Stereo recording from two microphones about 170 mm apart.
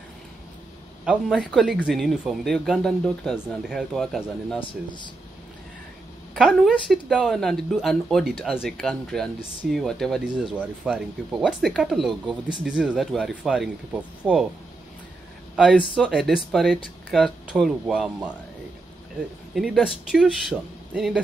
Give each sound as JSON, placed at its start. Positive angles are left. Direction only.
{"t": 1.0, "sound": "speech", "side_deg": -5}
{"t": 4.6, "sound": "speech", "side_deg": 25}
{"t": 6.3, "sound": "speech", "side_deg": 0}
{"t": 16.0, "sound": "speech", "side_deg": -5}
{"t": 19.5, "sound": "speech", "side_deg": -5}